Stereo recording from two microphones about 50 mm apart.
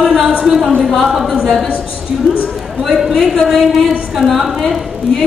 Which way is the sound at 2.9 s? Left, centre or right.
Centre.